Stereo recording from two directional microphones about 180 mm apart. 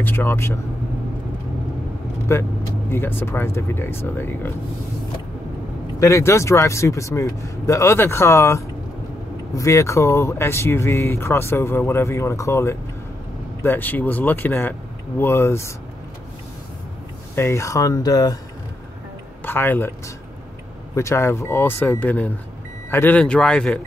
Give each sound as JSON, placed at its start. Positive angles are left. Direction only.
{"t": 0.0, "sound": "speech", "side_deg": 10}
{"t": 2.3, "sound": "speech", "side_deg": 15}
{"t": 5.9, "sound": "speech", "side_deg": 15}
{"t": 17.4, "sound": "speech", "side_deg": 15}
{"t": 19.4, "sound": "a man's voice", "side_deg": 10}
{"t": 20.9, "sound": "speech", "side_deg": 15}